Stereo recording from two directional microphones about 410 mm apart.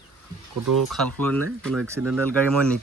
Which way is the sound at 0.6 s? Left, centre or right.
Right.